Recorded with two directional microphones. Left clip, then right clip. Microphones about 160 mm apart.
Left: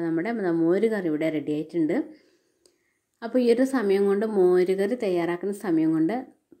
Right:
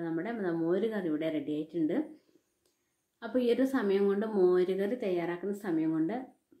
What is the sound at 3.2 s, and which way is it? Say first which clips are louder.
A woman's voice: left 7 dB; 40° left (ahead or behind).